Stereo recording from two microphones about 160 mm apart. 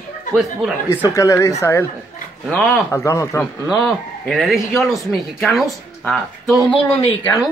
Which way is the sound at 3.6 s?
Centre (ahead or behind).